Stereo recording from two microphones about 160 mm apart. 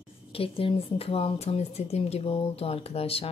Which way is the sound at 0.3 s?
35° left (ahead or behind).